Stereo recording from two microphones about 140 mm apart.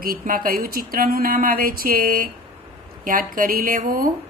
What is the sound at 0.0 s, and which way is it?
A woman's voice, 90° right.